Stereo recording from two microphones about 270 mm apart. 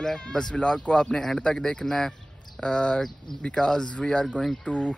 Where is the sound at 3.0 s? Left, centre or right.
Centre.